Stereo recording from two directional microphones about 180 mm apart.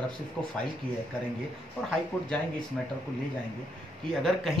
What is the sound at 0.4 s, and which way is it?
Speech, 5° left (ahead or behind).